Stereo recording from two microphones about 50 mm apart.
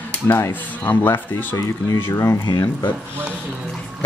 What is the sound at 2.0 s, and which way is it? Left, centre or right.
Speech, left.